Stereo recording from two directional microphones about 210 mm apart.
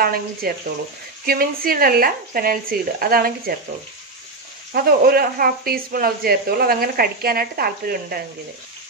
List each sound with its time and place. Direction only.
0.0 s speech: 45° right (ahead or behind)
4.7 s speech: 45° right (ahead or behind)